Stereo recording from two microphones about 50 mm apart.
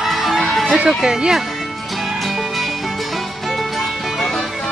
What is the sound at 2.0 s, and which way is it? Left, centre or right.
Music, centre.